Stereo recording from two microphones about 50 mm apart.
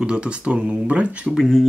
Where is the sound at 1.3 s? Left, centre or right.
Centre.